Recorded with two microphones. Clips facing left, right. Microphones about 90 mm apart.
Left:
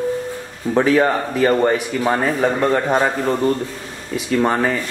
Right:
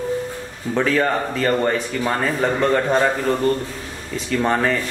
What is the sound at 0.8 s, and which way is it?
Speech, 10° left (ahead or behind).